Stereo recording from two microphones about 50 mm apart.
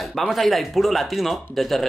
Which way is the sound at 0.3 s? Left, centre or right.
Centre.